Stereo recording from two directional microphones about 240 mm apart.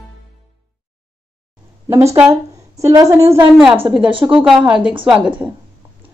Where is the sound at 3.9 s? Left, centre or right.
Right.